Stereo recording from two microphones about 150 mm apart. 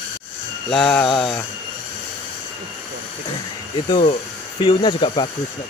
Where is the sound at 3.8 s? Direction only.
30° left (ahead or behind).